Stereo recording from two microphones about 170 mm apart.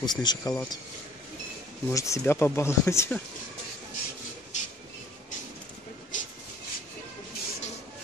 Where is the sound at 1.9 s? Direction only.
20° left (ahead or behind).